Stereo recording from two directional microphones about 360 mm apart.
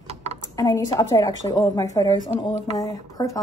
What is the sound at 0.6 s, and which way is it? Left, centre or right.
A woman's voice, centre.